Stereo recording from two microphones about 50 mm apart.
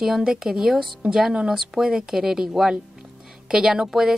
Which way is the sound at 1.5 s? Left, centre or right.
Centre.